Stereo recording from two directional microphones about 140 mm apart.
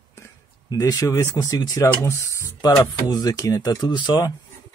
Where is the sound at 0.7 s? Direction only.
25° left (ahead or behind).